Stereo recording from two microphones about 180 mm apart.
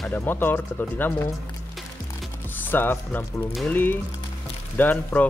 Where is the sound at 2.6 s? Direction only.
10° left (ahead or behind).